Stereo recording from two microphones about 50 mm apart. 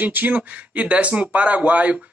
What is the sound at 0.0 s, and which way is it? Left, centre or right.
Speech, right.